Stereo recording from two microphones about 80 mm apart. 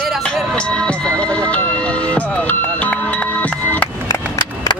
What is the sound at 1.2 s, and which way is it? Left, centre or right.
Music, centre.